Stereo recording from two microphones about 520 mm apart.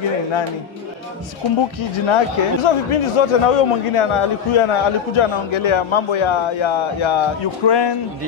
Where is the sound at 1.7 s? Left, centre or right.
Left.